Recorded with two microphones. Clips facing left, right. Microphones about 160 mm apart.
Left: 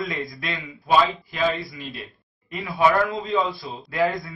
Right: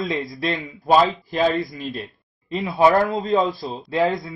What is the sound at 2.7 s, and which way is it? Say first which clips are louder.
Speech: right 3 dB; 35° right (ahead or behind).